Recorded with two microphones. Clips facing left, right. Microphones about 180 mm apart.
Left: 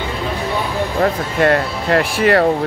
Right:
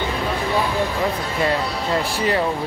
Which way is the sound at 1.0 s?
65° left (ahead or behind).